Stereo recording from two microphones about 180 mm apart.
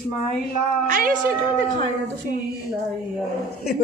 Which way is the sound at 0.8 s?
50° right (ahead or behind).